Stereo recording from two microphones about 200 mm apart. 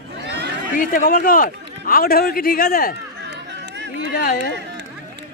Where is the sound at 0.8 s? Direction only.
45° left (ahead or behind).